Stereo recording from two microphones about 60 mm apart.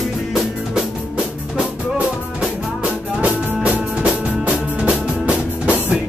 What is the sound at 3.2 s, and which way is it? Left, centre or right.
Music, right.